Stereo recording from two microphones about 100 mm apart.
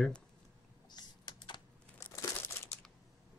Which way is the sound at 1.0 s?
45° left (ahead or behind).